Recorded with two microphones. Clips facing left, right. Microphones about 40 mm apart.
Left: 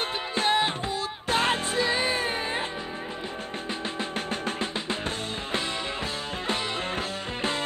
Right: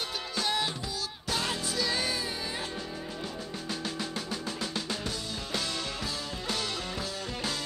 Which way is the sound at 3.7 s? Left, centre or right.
Left.